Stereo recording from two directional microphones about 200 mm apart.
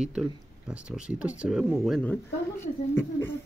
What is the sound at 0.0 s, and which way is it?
Speech, 5° right (ahead or behind).